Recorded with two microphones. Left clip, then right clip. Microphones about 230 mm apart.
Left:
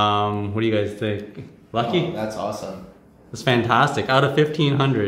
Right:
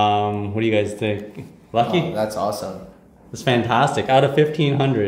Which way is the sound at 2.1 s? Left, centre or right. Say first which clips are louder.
Right 5 dB; right.